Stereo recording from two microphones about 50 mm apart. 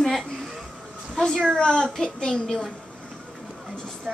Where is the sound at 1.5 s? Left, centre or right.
Centre.